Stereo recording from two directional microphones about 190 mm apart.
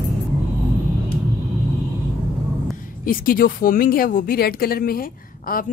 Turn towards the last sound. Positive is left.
turn(degrees=50)  # may be behind; listen again after turning